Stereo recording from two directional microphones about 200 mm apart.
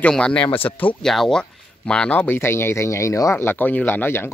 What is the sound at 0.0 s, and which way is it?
Speech, 5° left (ahead or behind).